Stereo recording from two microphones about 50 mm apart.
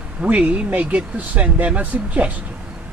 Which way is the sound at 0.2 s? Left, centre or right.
Right.